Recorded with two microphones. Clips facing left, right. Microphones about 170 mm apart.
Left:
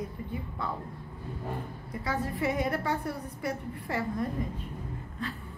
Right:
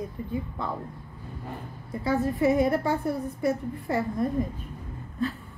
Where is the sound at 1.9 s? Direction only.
25° right (ahead or behind).